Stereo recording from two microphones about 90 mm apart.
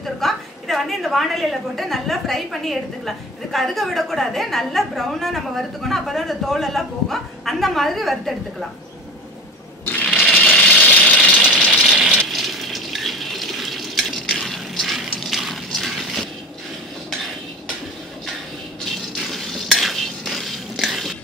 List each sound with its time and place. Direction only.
0.0 s a woman's voice: centre (ahead or behind)
10.2 s a sound: 15° left (ahead or behind)
11.3 s engine: 10° right (ahead or behind)
11.7 s a sound: 5° right (ahead or behind)
12.2 s water: centre (ahead or behind)
18.9 s stir: centre (ahead or behind)